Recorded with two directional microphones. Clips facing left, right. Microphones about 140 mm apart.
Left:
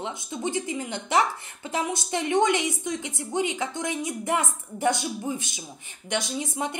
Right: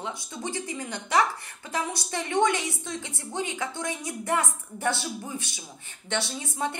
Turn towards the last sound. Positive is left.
turn(degrees=15)  # may be behind; listen again after turning